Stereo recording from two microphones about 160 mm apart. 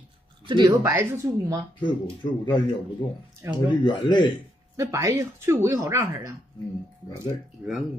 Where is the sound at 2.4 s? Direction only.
30° left (ahead or behind).